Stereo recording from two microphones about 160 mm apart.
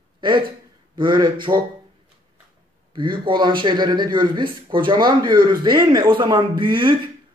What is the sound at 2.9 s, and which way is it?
Speech, 30° right (ahead or behind).